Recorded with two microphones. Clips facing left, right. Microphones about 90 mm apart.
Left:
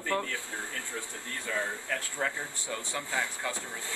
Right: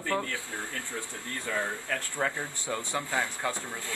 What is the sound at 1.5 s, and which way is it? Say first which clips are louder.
Speech: right 1 dB; 5° right (ahead or behind).